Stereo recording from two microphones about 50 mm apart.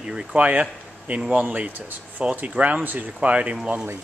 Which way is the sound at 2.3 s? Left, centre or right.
Right.